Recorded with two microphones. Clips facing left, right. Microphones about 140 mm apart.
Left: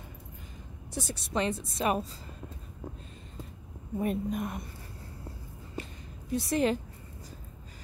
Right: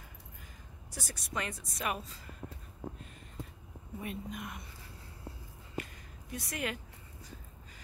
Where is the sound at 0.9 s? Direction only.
25° left (ahead or behind).